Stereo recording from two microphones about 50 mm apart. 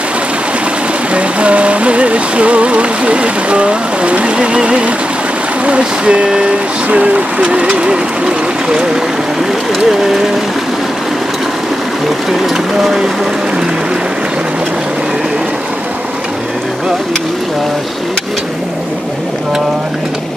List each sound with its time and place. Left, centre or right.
1.1 s music: right
5.7 s speech: right
7.9 s a sound: centre
12.3 s speech: centre